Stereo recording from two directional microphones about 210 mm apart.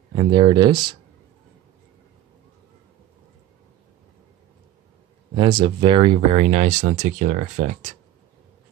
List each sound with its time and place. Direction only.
0.1 s speech: 20° right (ahead or behind)
5.3 s speech: 25° right (ahead or behind)